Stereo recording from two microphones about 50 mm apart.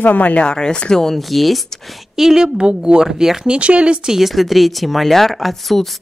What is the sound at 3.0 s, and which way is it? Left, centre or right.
Speech, centre.